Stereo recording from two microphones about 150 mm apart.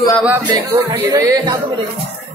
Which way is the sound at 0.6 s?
20° right (ahead or behind).